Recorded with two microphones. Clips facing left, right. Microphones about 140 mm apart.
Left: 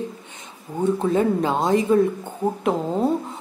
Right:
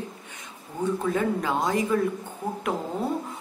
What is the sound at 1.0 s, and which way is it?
Speech, 25° left (ahead or behind).